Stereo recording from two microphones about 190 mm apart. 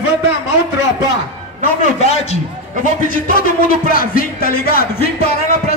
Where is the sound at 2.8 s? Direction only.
45° left (ahead or behind).